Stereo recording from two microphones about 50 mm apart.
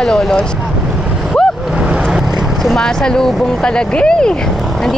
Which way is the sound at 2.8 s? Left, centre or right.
Centre.